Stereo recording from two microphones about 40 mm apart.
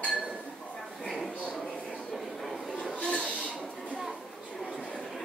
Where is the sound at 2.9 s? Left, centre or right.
Left.